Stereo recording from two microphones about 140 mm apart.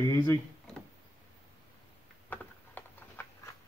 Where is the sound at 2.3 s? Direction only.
15° left (ahead or behind).